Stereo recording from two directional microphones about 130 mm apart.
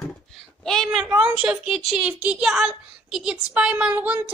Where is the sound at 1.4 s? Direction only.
5° right (ahead or behind).